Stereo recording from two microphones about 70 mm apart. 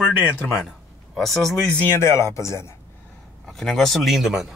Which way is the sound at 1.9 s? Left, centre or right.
Left.